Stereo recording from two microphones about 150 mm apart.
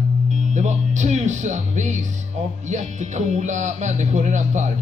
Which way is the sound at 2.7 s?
55° right (ahead or behind).